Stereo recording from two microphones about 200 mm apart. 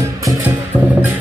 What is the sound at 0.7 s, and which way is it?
Music, 5° right (ahead or behind).